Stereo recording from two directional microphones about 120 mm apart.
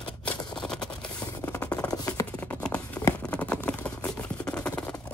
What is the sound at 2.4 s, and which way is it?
Patter, 10° left (ahead or behind).